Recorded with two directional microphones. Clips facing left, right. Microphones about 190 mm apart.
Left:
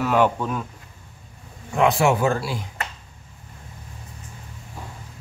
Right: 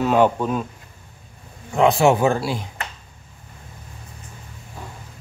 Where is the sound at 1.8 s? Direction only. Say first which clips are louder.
Right 3 dB; 25° right (ahead or behind).